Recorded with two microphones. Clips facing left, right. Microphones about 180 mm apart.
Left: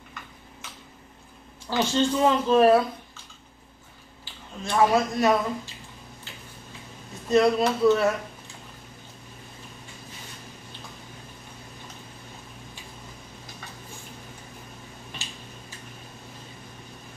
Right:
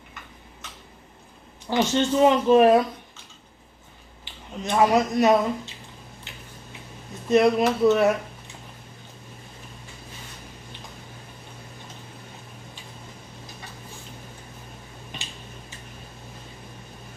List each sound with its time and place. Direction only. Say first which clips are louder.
1.7 s speech: right 2 dB; 20° right (ahead or behind)
4.2 s speech: right 3 dB; 20° right (ahead or behind)
7.2 s speech: right 2 dB; 20° right (ahead or behind)